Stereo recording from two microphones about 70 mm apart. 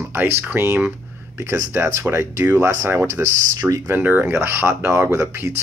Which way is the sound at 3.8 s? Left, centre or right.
Right.